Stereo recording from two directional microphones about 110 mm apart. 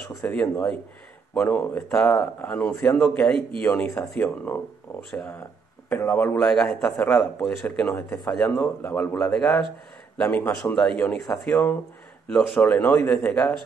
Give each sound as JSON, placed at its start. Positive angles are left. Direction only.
{"t": 0.2, "sound": "speech", "side_deg": 10}
{"t": 1.9, "sound": "speech", "side_deg": 5}
{"t": 4.9, "sound": "speech", "side_deg": 30}
{"t": 5.9, "sound": "speech", "side_deg": 20}
{"t": 6.4, "sound": "speech", "side_deg": 5}
{"t": 12.3, "sound": "speech", "side_deg": 5}
{"t": 12.6, "sound": "speech", "side_deg": 15}